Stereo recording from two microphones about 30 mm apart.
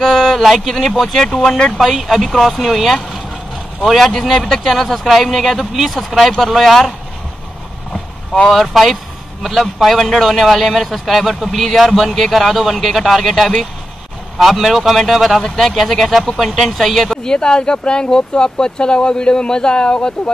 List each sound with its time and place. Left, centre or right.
0.0 s a sound: centre
0.4 s a man's voice: centre
2.3 s speech: centre
2.6 s a man's voice: centre
4.3 s speech: centre
4.6 s a man's voice: centre
8.5 s a man's voice: centre
17.2 s speech: left